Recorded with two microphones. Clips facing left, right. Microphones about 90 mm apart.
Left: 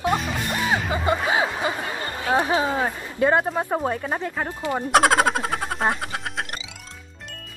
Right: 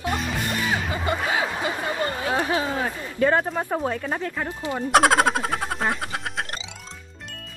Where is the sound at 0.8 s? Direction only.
Centre (ahead or behind).